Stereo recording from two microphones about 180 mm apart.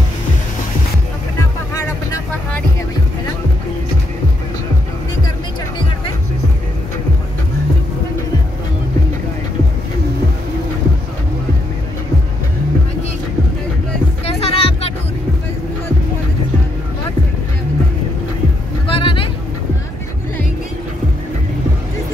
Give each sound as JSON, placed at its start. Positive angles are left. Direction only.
{"t": 14.2, "sound": "music", "side_deg": 35}
{"t": 18.9, "sound": "vehicle", "side_deg": 30}